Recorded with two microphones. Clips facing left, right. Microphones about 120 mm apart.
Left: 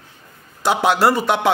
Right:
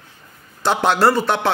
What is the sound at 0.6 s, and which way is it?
Speech, 10° left (ahead or behind).